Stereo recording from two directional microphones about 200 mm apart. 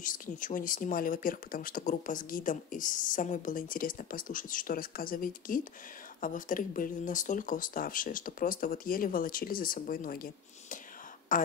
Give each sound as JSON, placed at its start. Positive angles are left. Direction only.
{"t": 0.0, "sound": "a woman's voice", "side_deg": 40}